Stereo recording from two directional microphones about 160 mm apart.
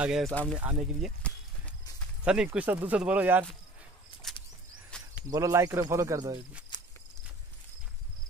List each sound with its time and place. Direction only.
0.0 s speech: 5° right (ahead or behind)
0.3 s speech: 10° left (ahead or behind)
0.6 s speech: 5° right (ahead or behind)
2.2 s speech: 5° right (ahead or behind)
4.9 s cricket: 5° left (ahead or behind)
5.3 s speech: 20° right (ahead or behind)
6.7 s walk: 30° left (ahead or behind)